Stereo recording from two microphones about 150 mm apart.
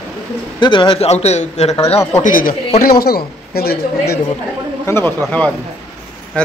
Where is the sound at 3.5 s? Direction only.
90° left.